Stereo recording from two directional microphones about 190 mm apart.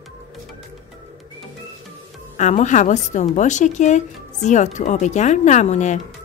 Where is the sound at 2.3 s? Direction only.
40° left (ahead or behind).